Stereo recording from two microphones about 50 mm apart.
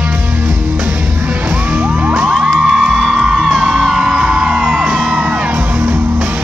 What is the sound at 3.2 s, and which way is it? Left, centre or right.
Music, right.